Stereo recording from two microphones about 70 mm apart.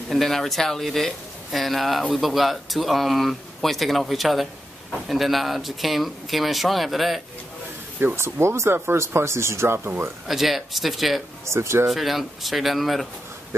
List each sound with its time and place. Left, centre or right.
0.1 s speech: centre
8.2 s speech: right
9.8 s speech: right
10.2 s speech: centre
11.4 s speech: right
11.9 s speech: centre